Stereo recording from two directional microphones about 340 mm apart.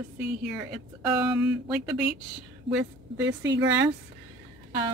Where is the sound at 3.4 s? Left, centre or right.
Right.